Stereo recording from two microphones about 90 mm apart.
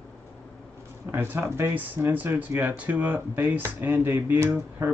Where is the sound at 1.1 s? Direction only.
25° right (ahead or behind).